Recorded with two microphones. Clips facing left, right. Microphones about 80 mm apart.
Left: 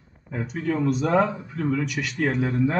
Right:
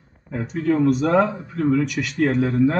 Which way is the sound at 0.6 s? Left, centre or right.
Right.